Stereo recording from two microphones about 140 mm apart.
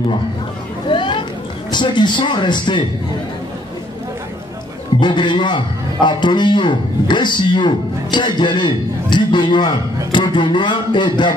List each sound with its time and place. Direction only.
0.8 s chatter: 35° left (ahead or behind)
1.7 s a man's voice: 35° left (ahead or behind)
5.0 s a man's voice: 35° left (ahead or behind)